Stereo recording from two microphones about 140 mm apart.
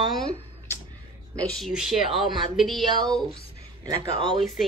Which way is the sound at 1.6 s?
5° right (ahead or behind).